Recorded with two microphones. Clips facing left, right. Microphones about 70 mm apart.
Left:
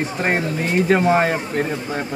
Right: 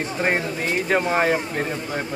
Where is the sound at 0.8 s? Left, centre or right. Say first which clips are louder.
Left 4 dB; centre.